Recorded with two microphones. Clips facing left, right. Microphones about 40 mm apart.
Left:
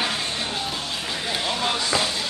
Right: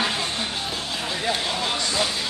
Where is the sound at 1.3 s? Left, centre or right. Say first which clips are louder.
Left 1 dB; centre.